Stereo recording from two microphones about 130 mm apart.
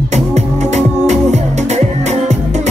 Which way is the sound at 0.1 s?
60° right (ahead or behind).